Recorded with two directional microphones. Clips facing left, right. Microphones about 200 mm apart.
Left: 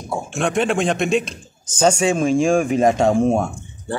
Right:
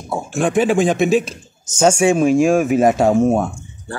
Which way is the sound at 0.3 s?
Centre (ahead or behind).